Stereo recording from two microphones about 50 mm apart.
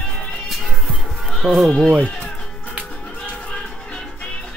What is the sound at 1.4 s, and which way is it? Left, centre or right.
Speech, centre.